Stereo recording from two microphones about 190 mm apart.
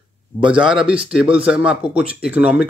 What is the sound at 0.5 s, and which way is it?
Speech, 5° right (ahead or behind).